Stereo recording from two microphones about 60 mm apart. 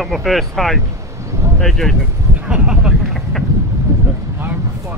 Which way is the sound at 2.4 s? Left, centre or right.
Centre.